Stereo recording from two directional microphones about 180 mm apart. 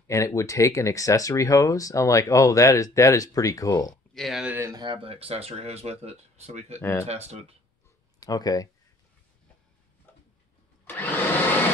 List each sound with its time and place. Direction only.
0.0 s speech: 15° left (ahead or behind)
4.1 s speech: centre (ahead or behind)
4.6 s speech: 15° right (ahead or behind)
4.8 s speech: 30° right (ahead or behind)
6.8 s speech: 15° left (ahead or behind)
7.1 s speech: 35° right (ahead or behind)
8.2 s speech: 20° left (ahead or behind)
10.9 s vacuum cleaner: 10° left (ahead or behind)